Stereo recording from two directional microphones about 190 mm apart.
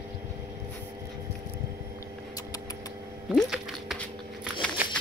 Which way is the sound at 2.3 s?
20° left (ahead or behind).